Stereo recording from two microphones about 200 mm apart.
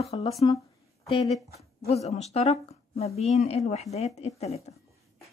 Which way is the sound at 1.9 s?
35° left (ahead or behind).